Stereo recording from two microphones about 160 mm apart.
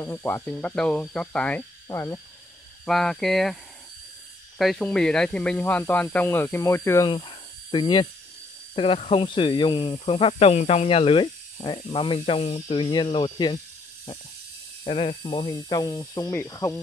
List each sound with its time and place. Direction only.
0.0 s speech: 15° left (ahead or behind)
1.9 s speech: 20° left (ahead or behind)
2.8 s speech: 5° left (ahead or behind)
4.6 s speech: 5° left (ahead or behind)
7.1 s speech: 30° left (ahead or behind)
14.9 s speech: 35° left (ahead or behind)
15.4 s speech: 25° left (ahead or behind)